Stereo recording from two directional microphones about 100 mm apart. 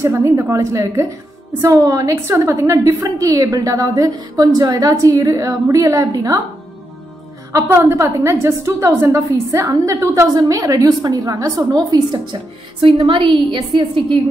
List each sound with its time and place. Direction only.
0.0 s a woman's voice: 30° right (ahead or behind)
7.5 s a woman's voice: 25° right (ahead or behind)
13.0 s a woman's voice: 60° right (ahead or behind)